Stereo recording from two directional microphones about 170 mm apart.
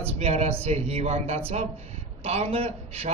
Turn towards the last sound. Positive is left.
turn(degrees=-35)  # may be behind; listen again after turning